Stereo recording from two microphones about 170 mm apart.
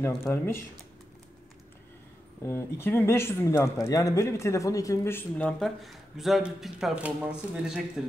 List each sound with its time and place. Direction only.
0.0 s speech: 15° left (ahead or behind)
2.4 s speech: 15° left (ahead or behind); by 7.8 s 5° right (ahead or behind)